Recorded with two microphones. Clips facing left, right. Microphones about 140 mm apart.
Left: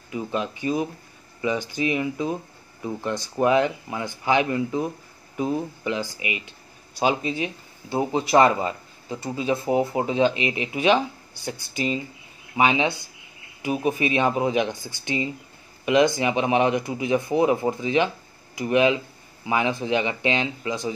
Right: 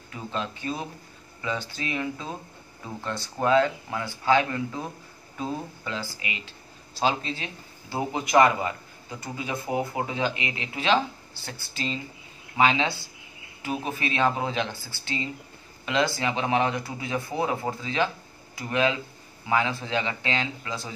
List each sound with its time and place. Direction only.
0.1 s speech: 15° left (ahead or behind)
8.1 s speech: 30° left (ahead or behind)